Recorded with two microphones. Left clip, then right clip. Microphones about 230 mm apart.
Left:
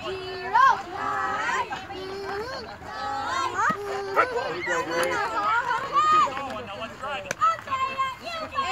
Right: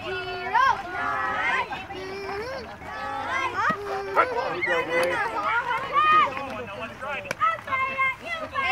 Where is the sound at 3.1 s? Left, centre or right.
Right.